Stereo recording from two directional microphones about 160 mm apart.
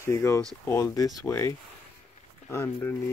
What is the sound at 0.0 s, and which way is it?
Speech, 15° left (ahead or behind).